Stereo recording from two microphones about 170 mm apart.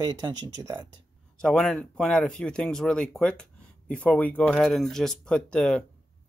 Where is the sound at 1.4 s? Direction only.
5° left (ahead or behind).